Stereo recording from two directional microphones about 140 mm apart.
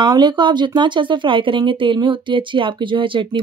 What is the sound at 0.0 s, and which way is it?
Speech, 30° right (ahead or behind).